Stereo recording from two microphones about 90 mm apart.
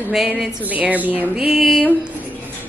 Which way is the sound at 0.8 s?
15° right (ahead or behind).